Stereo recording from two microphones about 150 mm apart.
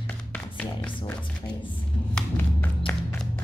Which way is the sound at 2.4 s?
10° left (ahead or behind).